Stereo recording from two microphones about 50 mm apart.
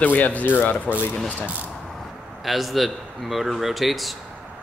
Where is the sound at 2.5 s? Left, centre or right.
Centre.